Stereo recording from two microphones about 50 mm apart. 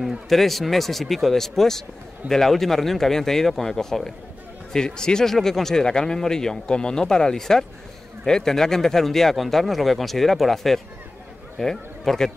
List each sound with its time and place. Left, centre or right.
0.3 s speech: centre